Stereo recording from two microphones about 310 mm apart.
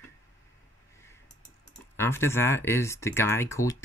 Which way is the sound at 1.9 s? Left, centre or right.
Centre.